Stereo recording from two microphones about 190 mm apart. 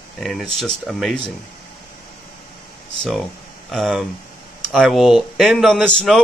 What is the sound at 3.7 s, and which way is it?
Speech, centre (ahead or behind).